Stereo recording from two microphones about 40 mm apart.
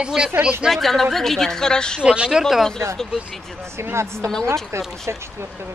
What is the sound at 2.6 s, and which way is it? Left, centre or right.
Speech, centre.